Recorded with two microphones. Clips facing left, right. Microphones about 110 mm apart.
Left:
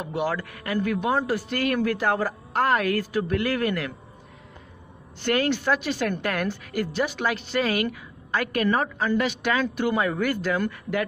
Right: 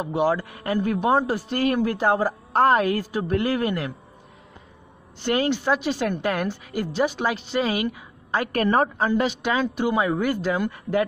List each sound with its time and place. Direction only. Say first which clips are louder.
0.0 s a woman's voice: right 5 dB; 25° right (ahead or behind)
5.2 s a woman's voice: right 1 dB; 25° right (ahead or behind)
8.5 s a woman's voice: right 4 dB; 35° right (ahead or behind)